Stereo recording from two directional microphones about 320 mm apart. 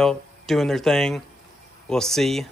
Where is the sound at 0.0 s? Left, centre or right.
Centre.